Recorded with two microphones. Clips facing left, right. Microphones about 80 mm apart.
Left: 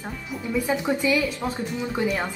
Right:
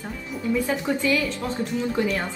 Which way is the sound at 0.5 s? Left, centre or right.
Centre.